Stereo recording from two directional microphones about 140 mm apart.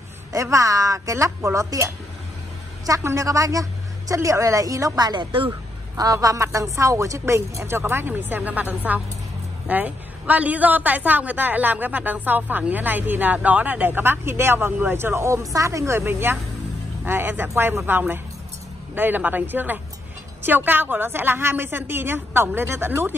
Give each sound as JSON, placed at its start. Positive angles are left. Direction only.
{"t": 0.3, "sound": "speech", "side_deg": -25}
{"t": 2.9, "sound": "a woman's voice", "side_deg": -20}